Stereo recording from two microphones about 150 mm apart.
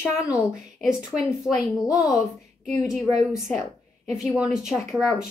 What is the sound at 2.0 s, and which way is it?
A woman's voice, centre (ahead or behind).